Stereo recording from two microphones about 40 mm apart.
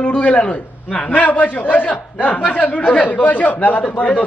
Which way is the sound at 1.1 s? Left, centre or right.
Left.